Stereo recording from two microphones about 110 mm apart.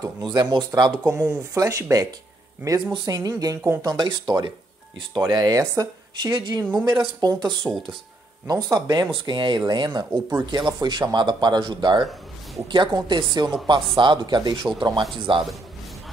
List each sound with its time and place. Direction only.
0.0 s speech: 35° right (ahead or behind)
2.8 s speech: 45° right (ahead or behind)
8.7 s speech: 40° right (ahead or behind)
12.0 s a sound: centre (ahead or behind)
12.6 s speech: 45° right (ahead or behind)